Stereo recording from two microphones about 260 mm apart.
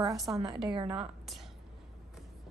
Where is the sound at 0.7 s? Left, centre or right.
Right.